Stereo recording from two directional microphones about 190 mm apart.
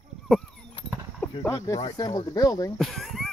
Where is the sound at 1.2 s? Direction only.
15° left (ahead or behind).